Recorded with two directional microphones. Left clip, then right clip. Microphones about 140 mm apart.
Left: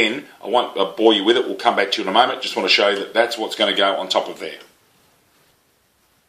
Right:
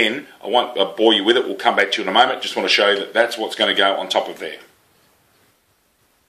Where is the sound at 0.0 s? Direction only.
30° left (ahead or behind).